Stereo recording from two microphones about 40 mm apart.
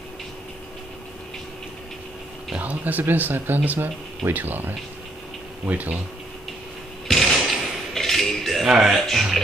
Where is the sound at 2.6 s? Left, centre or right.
Right.